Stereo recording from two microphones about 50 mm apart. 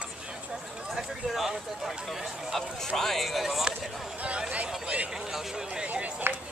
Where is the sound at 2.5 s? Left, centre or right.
Centre.